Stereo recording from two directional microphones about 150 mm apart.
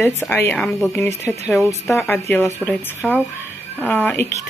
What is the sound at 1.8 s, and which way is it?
Speech, 15° left (ahead or behind).